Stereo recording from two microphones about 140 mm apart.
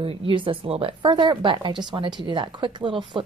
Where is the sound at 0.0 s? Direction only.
40° right (ahead or behind).